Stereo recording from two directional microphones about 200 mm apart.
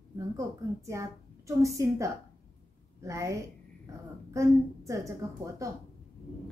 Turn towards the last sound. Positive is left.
turn(degrees=-15)  # may be behind; listen again after turning